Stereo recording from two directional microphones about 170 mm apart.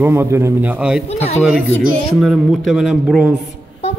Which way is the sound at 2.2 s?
Centre (ahead or behind).